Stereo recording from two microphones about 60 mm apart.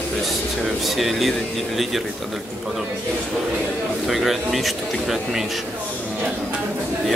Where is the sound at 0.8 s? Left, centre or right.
Centre.